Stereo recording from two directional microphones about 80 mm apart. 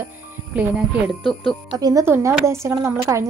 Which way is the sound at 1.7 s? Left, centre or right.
Right.